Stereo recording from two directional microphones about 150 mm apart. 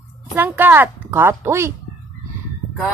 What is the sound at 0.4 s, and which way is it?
Speech, 10° right (ahead or behind).